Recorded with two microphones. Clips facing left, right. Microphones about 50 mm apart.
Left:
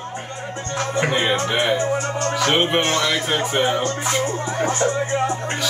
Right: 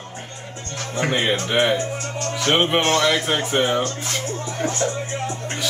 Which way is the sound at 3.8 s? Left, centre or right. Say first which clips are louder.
Left 5 dB; left.